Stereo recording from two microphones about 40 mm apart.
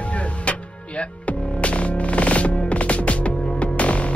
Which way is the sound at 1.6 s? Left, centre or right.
Left.